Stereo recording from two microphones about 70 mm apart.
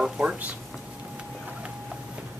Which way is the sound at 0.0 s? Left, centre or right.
Centre.